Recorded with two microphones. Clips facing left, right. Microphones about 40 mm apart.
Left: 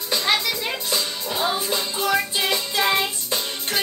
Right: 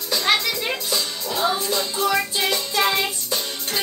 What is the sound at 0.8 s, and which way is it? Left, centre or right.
Music, left.